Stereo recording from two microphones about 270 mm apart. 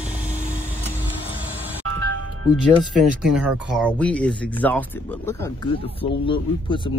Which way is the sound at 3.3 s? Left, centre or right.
Centre.